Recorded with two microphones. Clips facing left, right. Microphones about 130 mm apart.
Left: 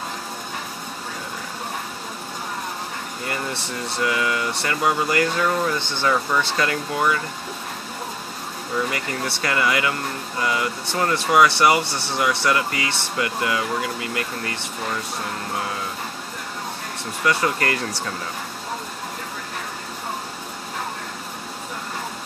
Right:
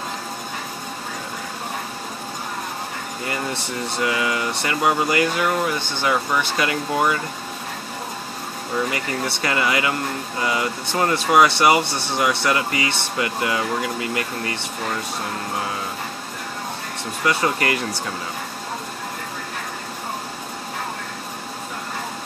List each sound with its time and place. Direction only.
4.0 s speech: 20° right (ahead or behind)
8.9 s speech: 20° right (ahead or behind)
17.3 s speech: 20° right (ahead or behind)